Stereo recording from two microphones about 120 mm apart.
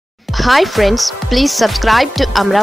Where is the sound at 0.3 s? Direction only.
Centre (ahead or behind).